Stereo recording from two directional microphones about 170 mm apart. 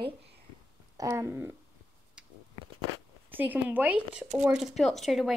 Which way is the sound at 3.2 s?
10° right (ahead or behind).